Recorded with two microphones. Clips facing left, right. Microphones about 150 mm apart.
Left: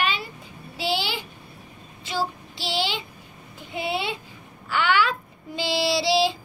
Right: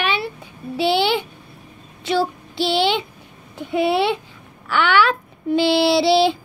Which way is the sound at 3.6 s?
65° right (ahead or behind).